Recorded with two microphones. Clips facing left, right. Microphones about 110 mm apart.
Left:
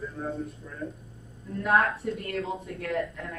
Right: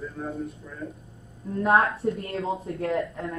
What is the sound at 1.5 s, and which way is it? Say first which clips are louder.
A woman's voice: right 3 dB; 30° right (ahead or behind).